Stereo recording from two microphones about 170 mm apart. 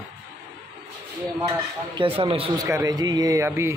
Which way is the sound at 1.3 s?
25° right (ahead or behind).